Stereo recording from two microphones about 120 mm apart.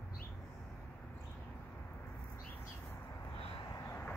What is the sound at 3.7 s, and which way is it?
Vehicle, 25° left (ahead or behind).